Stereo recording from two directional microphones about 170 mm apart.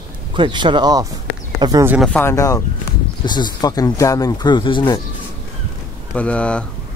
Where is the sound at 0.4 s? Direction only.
25° right (ahead or behind).